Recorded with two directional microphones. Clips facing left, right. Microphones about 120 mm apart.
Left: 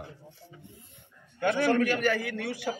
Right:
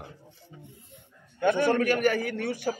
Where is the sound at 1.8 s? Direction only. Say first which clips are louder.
Right 2 dB; 45° right (ahead or behind).